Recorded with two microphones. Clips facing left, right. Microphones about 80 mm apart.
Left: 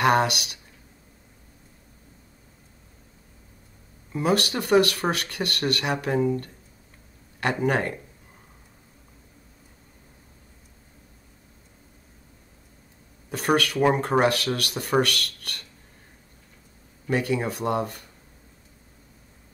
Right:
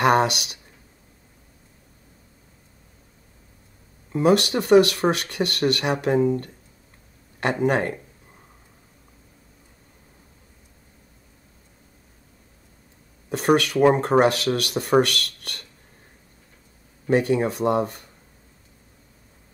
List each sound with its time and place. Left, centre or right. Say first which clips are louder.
0.0 s speech: right 2 dB; right
4.1 s speech: right 5 dB; right
7.6 s speech: right 3 dB; right
13.3 s speech: right 4 dB; right
17.1 s speech: right 5 dB; right